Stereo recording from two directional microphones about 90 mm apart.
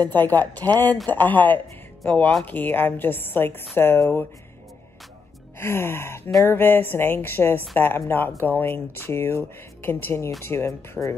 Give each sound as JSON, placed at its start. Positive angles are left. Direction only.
{"t": 0.1, "sound": "a woman's voice", "side_deg": 20}
{"t": 5.6, "sound": "a woman's voice", "side_deg": 25}
{"t": 11.0, "sound": "speech", "side_deg": -10}